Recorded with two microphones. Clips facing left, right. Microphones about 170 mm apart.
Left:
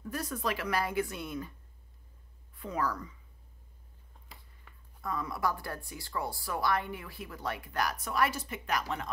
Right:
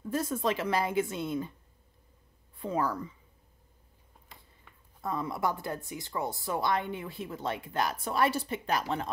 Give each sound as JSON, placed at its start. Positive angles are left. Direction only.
{"t": 0.0, "sound": "a woman's voice", "side_deg": -25}
{"t": 2.5, "sound": "a woman's voice", "side_deg": -25}
{"t": 5.0, "sound": "a woman's voice", "side_deg": -25}